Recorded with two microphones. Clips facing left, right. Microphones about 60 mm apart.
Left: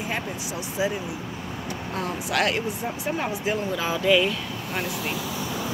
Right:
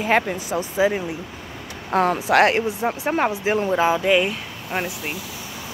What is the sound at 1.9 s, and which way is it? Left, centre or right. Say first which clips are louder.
Speech: right 12 dB; right.